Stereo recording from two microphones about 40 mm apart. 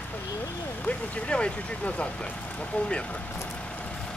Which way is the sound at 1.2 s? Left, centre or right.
Left.